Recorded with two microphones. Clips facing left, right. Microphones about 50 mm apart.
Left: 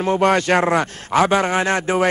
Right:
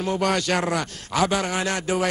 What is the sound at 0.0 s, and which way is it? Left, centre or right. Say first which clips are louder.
A man's voice: left 6 dB; left.